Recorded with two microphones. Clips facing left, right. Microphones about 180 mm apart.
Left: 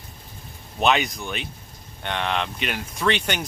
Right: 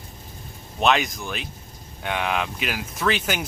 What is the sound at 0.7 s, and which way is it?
Speech, centre (ahead or behind).